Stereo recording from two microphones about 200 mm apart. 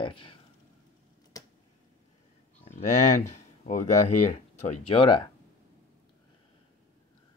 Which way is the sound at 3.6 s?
35° left (ahead or behind).